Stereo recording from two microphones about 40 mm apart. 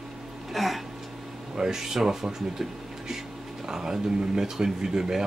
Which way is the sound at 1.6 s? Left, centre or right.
Centre.